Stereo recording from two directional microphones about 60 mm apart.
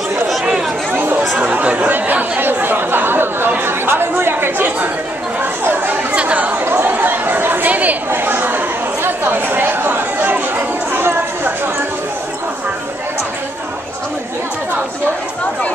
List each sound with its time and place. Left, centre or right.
0.9 s chatter: right
6.1 s chatter: right
6.6 s chatter: right